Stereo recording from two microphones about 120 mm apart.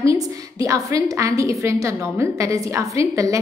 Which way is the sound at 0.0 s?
25° right (ahead or behind).